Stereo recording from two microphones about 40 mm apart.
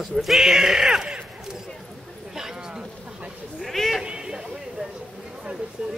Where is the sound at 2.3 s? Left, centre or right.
Centre.